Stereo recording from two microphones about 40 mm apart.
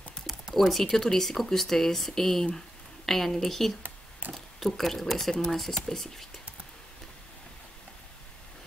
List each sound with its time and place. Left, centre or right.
0.6 s speech: centre
4.2 s speech: right
4.6 s speech: centre
5.3 s speech: centre